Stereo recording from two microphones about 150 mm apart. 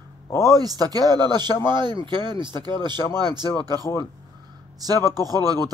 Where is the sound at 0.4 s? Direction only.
25° right (ahead or behind).